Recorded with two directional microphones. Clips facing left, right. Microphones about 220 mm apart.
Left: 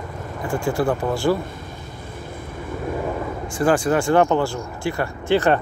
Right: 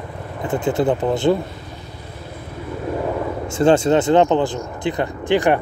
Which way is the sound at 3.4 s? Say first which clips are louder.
Right 4 dB; 25° right (ahead or behind).